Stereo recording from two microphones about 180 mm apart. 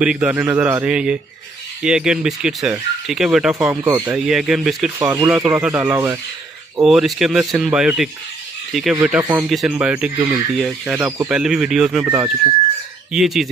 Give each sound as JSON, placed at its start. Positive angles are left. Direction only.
{"t": 0.0, "sound": "speech", "side_deg": -5}
{"t": 3.5, "sound": "speech", "side_deg": -15}
{"t": 4.1, "sound": "speech", "side_deg": -5}
{"t": 4.9, "sound": "speech", "side_deg": -15}
{"t": 6.8, "sound": "speech", "side_deg": 0}
{"t": 9.2, "sound": "speech", "side_deg": -15}
{"t": 9.5, "sound": "speech", "side_deg": -5}